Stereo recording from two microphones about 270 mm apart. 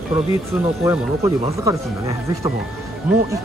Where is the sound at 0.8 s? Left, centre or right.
Centre.